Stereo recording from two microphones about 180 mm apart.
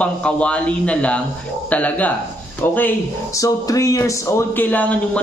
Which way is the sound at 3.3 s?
20° left (ahead or behind).